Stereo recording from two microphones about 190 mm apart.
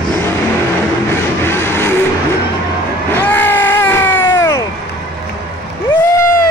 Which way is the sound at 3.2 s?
10° left (ahead or behind).